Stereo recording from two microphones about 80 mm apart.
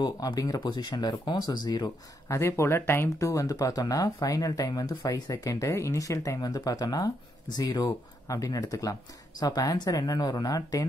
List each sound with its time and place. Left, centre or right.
0.0 s speech: left
2.2 s speech: left